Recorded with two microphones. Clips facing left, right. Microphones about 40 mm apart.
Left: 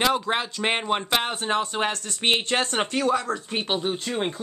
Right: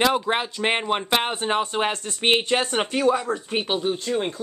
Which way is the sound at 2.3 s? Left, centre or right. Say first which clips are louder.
Right 3 dB; centre.